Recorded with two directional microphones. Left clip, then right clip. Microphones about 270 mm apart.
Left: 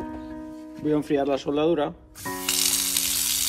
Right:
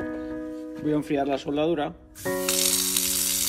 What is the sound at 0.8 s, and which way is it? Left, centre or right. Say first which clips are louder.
Speech: left 2 dB; centre.